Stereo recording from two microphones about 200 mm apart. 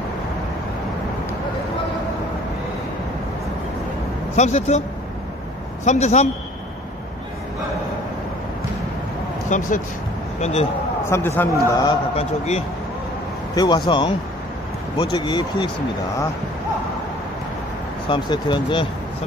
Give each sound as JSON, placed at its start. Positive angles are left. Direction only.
{"t": 4.4, "sound": "speech", "side_deg": 35}
{"t": 5.9, "sound": "speech", "side_deg": 35}
{"t": 9.5, "sound": "speech", "side_deg": 40}
{"t": 11.1, "sound": "a man's voice", "side_deg": 10}
{"t": 12.2, "sound": "speech", "side_deg": 30}
{"t": 18.0, "sound": "speech", "side_deg": 25}